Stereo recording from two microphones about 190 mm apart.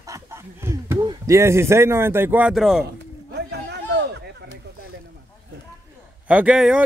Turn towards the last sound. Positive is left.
turn(degrees=-5)  # may be behind; listen again after turning